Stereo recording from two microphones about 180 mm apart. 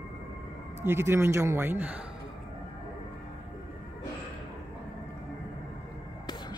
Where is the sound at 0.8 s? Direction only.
15° right (ahead or behind).